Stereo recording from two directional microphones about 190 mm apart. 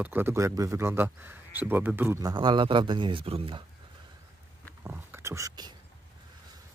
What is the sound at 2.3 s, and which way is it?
A man's voice, 25° right (ahead or behind).